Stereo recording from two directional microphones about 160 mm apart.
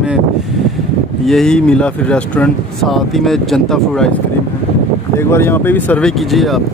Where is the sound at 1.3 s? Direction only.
5° left (ahead or behind).